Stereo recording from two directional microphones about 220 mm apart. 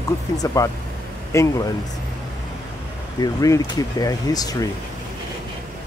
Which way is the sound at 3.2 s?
15° left (ahead or behind).